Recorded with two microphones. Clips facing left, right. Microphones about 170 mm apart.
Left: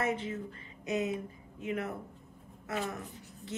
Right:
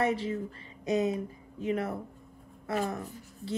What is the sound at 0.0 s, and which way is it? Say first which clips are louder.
A woman's voice: right 4 dB; 35° right (ahead or behind).